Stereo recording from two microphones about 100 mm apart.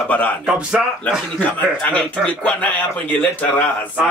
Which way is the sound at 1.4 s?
15° left (ahead or behind).